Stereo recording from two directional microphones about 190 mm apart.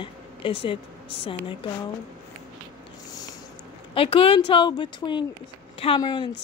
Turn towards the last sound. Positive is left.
turn(degrees=25)  # may be behind; listen again after turning